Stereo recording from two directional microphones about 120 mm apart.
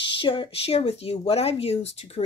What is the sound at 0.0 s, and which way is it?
Speech, 45° left (ahead or behind).